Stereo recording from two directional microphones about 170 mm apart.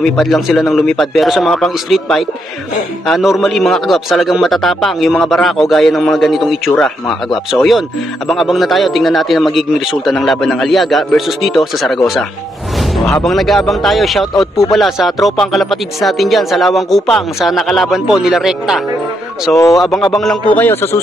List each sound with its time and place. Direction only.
0.0 s a man's voice: centre (ahead or behind)
19.5 s a man's voice: 20° left (ahead or behind)
20.2 s a man's voice: 5° left (ahead or behind)